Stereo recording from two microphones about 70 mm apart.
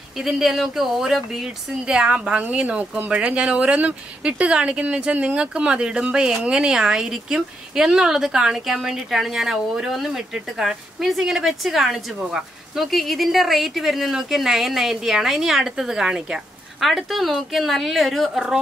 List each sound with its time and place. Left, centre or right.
0.2 s speech: centre